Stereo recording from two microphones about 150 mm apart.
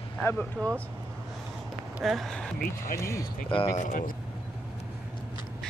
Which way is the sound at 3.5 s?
40° left (ahead or behind).